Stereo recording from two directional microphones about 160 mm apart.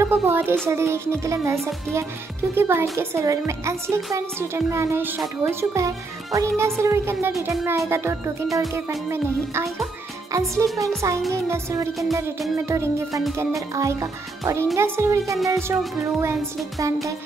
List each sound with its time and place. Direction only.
0.0 s a woman's voice: 15° right (ahead or behind)
1.6 s music: centre (ahead or behind)
2.5 s a woman's voice: 15° right (ahead or behind)
10.7 s music: centre (ahead or behind)
11.3 s a woman's voice: 15° right (ahead or behind)
15.3 s music: centre (ahead or behind)